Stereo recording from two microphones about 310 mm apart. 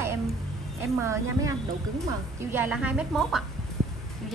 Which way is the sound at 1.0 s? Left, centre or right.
Centre.